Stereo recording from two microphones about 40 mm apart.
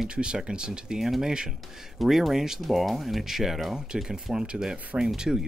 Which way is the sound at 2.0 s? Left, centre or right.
Centre.